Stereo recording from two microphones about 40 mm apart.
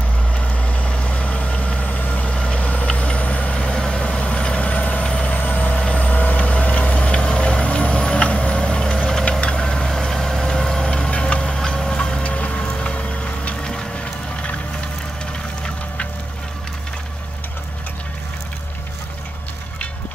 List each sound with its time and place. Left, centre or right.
0.3 s vehicle: left
4.6 s vehicle: left
5.0 s vehicle: left
5.3 s vehicle: left
7.1 s music: left
8.3 s vehicle: left; by 10.9 s centre
11.1 s tick-tock: left
11.4 s a sound: centre
12.2 s music: left
12.7 s vehicle: left
13.6 s a sound: centre